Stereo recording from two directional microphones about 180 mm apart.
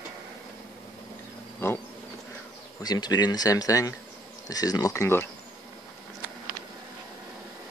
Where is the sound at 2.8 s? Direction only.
20° left (ahead or behind).